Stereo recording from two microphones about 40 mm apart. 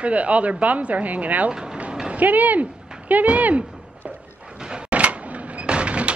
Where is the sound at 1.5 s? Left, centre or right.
Centre.